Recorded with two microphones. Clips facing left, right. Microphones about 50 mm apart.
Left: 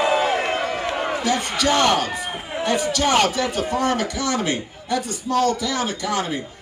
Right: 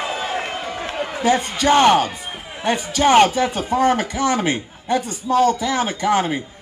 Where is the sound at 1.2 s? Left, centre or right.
Right.